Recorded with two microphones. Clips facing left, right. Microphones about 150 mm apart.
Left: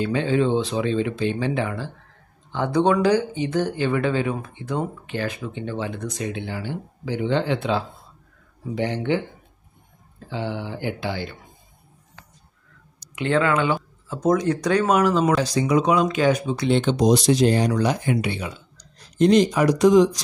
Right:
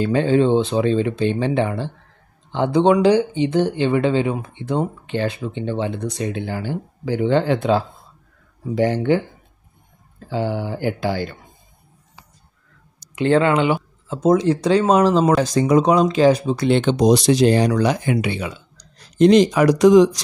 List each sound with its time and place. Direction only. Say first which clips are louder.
0.0 s speech: right 4 dB; 40° right (ahead or behind)
10.3 s speech: right 5 dB; 45° right (ahead or behind)
13.1 s speech: right 5 dB; 30° right (ahead or behind)
15.3 s speech: right 4 dB; 45° right (ahead or behind)
16.5 s speech: right 3 dB; 60° right (ahead or behind); by 20.2 s 80° right